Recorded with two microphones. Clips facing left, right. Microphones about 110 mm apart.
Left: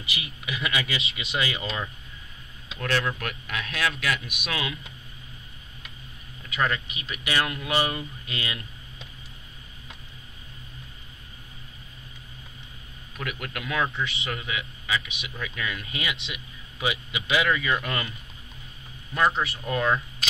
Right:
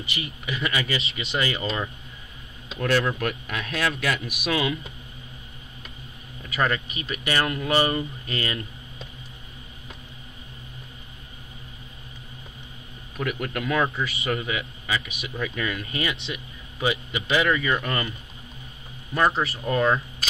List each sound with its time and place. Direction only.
0.0 s speech: centre (ahead or behind)
2.7 s speech: 5° right (ahead or behind)
6.5 s speech: centre (ahead or behind)
13.2 s speech: centre (ahead or behind)
19.1 s speech: centre (ahead or behind)